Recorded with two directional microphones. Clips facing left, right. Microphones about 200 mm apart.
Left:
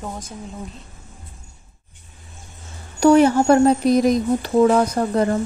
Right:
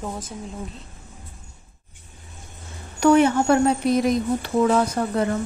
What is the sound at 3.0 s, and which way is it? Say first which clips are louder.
A woman's voice: left 3 dB; 35° left (ahead or behind).